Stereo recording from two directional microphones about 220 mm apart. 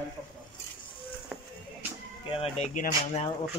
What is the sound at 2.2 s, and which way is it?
Speech, 25° left (ahead or behind).